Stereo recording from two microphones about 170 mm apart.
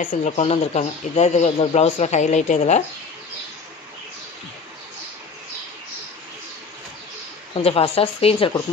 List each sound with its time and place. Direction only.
0.0 s speech: 40° left (ahead or behind)
7.6 s speech: 35° left (ahead or behind)